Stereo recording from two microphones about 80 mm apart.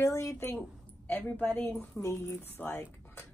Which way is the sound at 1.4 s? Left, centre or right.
Left.